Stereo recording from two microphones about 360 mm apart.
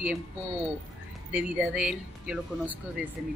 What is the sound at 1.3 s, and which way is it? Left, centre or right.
Speech, centre.